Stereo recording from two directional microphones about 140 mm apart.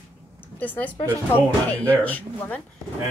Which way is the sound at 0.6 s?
10° left (ahead or behind).